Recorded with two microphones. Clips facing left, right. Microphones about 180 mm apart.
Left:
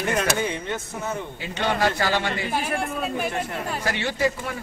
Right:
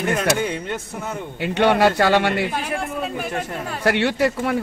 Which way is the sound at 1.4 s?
65° right (ahead or behind).